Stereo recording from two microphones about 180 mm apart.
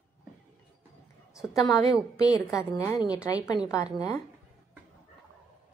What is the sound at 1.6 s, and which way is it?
A woman's voice, 20° left (ahead or behind).